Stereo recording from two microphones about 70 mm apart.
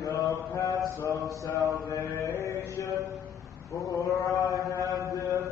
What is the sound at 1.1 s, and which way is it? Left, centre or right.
Mantra, right.